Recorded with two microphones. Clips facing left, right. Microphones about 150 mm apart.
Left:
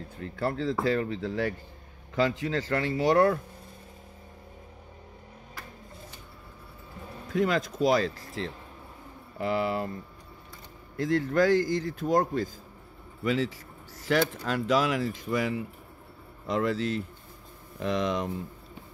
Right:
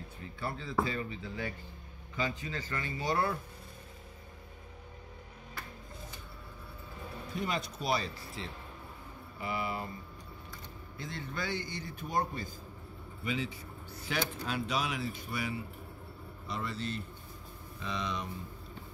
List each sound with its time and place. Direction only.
0.2 s a man's voice: 85° left
0.8 s a man's voice: 75° left (ahead or behind)
7.3 s a man's voice: 90° left
11.0 s a man's voice: 90° left